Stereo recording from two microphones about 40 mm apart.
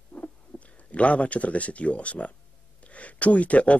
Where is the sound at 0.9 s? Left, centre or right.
Left.